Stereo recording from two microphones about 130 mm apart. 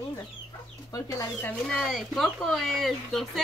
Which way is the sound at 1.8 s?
Centre (ahead or behind).